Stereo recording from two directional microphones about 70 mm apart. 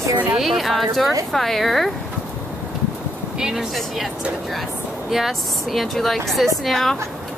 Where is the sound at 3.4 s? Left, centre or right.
Centre.